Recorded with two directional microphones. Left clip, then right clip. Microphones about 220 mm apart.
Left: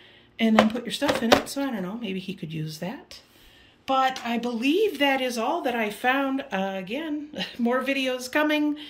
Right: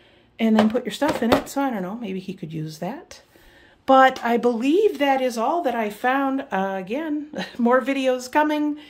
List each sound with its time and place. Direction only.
0.4 s speech: 10° right (ahead or behind)
3.8 s speech: 25° right (ahead or behind)
4.6 s speech: 10° right (ahead or behind)